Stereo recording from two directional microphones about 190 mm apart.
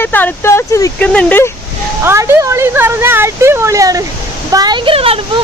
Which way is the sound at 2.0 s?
15° right (ahead or behind).